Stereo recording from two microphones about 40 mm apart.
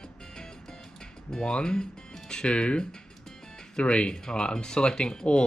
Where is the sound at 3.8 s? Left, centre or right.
Left.